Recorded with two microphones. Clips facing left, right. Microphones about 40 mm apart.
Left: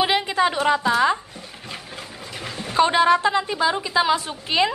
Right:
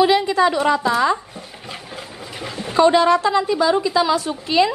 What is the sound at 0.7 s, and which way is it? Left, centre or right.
Speech, left.